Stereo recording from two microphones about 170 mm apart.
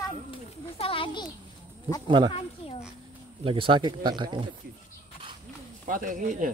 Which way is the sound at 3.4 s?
30° right (ahead or behind).